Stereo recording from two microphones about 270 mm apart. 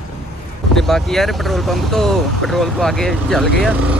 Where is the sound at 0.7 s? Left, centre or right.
Centre.